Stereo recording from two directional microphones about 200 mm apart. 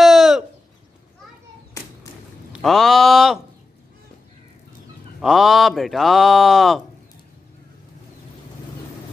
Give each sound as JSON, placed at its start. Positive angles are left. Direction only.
{"t": 0.0, "sound": "bird", "side_deg": 0}
{"t": 1.8, "sound": "a sound", "side_deg": 15}
{"t": 2.5, "sound": "speech", "side_deg": 0}
{"t": 5.2, "sound": "speech", "side_deg": 0}